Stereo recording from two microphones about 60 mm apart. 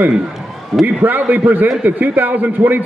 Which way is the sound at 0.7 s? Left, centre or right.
Centre.